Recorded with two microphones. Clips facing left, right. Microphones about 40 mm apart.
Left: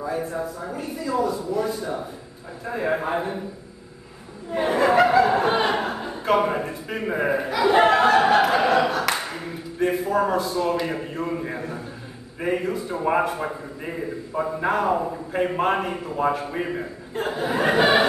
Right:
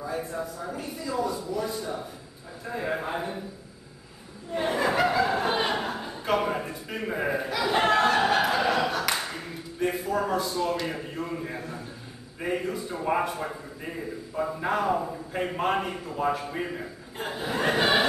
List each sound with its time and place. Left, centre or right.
0.7 s a man's voice: centre; by 3.3 s left
4.5 s a man's voice: centre
8.3 s fowl: centre
8.7 s speech: centre
10.0 s a man's voice: centre